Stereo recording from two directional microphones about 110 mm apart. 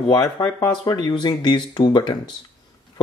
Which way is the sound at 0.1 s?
35° left (ahead or behind).